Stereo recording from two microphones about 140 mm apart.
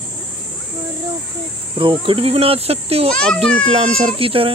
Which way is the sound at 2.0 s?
40° right (ahead or behind).